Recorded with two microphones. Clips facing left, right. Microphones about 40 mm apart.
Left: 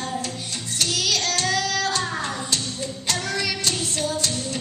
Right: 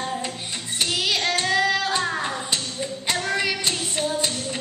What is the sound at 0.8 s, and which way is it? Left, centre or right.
Child singing, right.